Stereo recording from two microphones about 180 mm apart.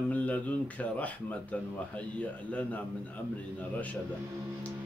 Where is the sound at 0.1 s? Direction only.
10° left (ahead or behind).